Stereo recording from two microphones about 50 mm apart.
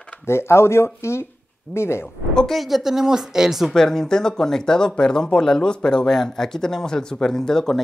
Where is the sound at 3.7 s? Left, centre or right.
Centre.